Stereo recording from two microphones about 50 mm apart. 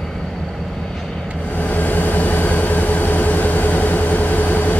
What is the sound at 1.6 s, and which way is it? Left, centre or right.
Vehicle, left.